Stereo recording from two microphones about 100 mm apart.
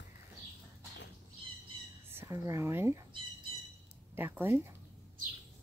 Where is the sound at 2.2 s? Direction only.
35° right (ahead or behind).